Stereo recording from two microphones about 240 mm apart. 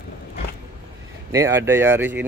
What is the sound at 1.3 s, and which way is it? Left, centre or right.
Speech, centre.